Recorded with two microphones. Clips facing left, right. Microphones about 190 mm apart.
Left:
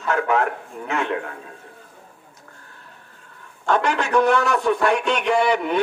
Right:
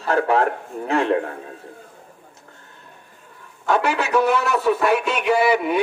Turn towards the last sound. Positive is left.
turn(degrees=-5)  # may be behind; listen again after turning